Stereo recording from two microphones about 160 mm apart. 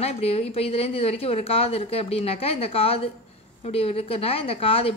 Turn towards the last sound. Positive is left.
turn(degrees=35)  # may be behind; listen again after turning